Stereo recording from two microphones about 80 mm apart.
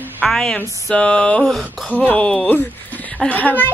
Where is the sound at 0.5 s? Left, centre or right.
Centre.